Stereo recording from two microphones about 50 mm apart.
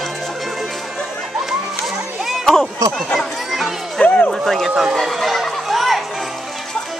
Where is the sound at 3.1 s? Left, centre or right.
Centre.